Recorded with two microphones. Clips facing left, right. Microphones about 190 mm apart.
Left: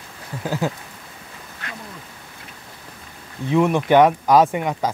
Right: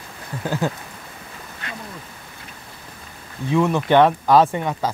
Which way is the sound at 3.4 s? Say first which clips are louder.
Left 1 dB; 20° left (ahead or behind).